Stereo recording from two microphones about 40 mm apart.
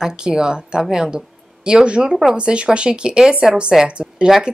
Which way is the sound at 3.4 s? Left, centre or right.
Centre.